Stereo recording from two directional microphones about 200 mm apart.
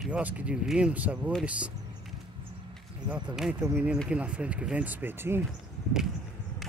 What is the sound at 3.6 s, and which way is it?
Speech, 15° right (ahead or behind).